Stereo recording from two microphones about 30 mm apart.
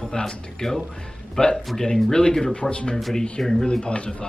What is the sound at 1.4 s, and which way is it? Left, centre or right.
Speech, left.